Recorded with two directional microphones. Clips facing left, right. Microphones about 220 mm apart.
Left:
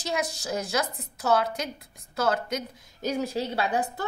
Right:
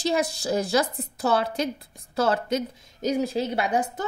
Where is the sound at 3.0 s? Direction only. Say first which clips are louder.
Right 4 dB; 15° right (ahead or behind).